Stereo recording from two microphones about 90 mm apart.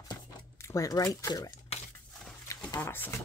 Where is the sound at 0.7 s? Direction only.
40° left (ahead or behind).